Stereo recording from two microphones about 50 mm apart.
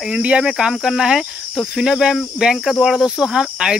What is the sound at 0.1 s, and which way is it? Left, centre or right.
Speech, right.